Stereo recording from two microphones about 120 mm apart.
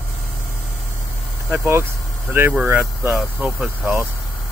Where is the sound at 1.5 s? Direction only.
20° right (ahead or behind).